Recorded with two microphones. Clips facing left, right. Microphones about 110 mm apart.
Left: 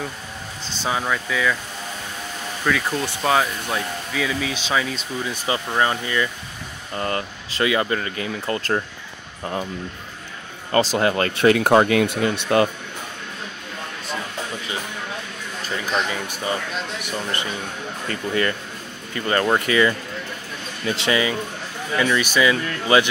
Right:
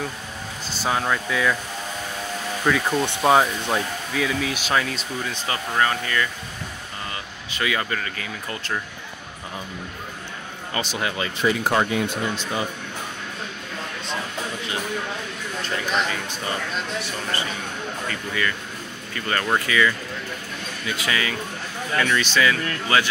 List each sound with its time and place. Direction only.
0.7 s speech: centre (ahead or behind)
2.6 s speech: 10° right (ahead or behind)
4.1 s speech: centre (ahead or behind)
5.5 s speech: 20° left (ahead or behind)
7.0 s speech: 50° left (ahead or behind)
7.5 s speech: 25° left (ahead or behind)
8.5 s speech: 40° left (ahead or behind)
10.7 s speech: 45° left (ahead or behind); by 12.6 s 70° left (ahead or behind)
18.0 s speech: 35° left (ahead or behind)
19.1 s speech: 25° left (ahead or behind)